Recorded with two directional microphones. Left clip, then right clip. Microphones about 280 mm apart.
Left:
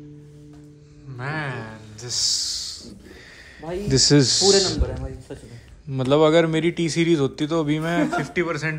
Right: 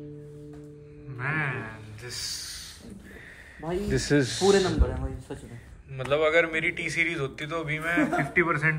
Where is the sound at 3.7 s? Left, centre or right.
Left.